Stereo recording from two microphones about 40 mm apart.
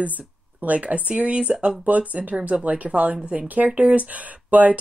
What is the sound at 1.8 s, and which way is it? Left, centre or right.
Speech, right.